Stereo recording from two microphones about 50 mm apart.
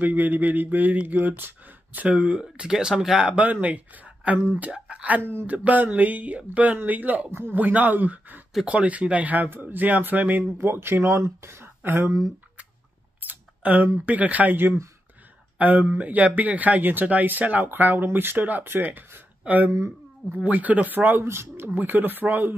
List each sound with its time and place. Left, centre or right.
0.0 s speech: right
2.0 s speech: right
3.2 s speech: right
5.5 s speech: right
7.2 s speech: right
7.5 s speech: right
9.5 s speech: right
10.6 s speech: right
13.2 s camera: right
14.0 s speech: right